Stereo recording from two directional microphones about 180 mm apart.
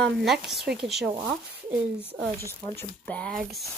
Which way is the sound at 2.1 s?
65° right (ahead or behind).